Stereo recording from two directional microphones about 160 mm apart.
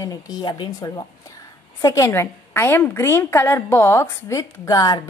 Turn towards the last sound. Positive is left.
turn(degrees=20)  # may be behind; listen again after turning